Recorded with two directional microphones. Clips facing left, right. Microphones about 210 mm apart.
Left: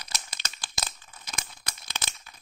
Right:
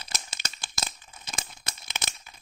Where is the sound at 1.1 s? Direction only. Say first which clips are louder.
Right 1 dB; 25° right (ahead or behind).